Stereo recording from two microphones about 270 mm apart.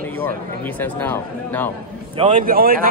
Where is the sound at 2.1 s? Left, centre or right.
Centre.